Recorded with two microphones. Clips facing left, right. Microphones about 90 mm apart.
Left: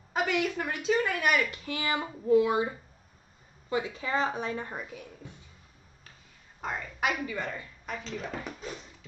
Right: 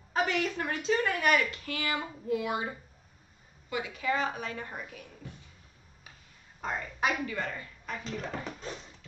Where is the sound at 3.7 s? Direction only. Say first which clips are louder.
Left 1 dB; 30° left (ahead or behind).